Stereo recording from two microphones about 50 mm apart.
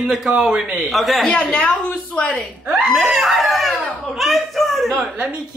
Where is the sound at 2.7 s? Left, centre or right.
Centre.